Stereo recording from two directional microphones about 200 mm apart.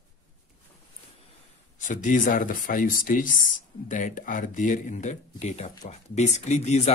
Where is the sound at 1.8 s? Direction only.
40° left (ahead or behind).